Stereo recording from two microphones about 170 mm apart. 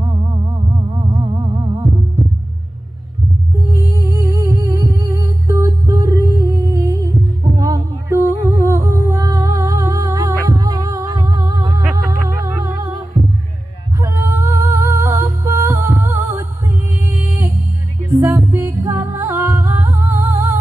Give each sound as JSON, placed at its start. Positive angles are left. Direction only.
{"t": 0.8, "sound": "music", "side_deg": -20}
{"t": 3.7, "sound": "music", "side_deg": -15}
{"t": 13.9, "sound": "music", "side_deg": -20}